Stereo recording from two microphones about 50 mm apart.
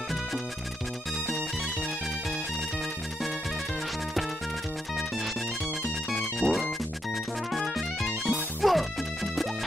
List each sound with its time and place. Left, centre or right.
6.1 s music: centre